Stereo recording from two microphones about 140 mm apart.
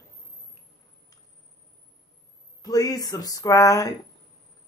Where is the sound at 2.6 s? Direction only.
25° left (ahead or behind).